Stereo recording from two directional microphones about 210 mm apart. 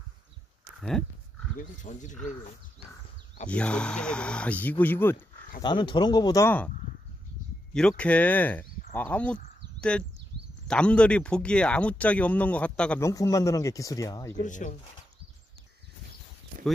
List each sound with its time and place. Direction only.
0.7 s speech: centre (ahead or behind)
1.8 s speech: 35° left (ahead or behind)
3.4 s speech: 5° left (ahead or behind)
5.6 s speech: 20° left (ahead or behind)
7.7 s speech: 5° left (ahead or behind)
14.4 s speech: 35° left (ahead or behind)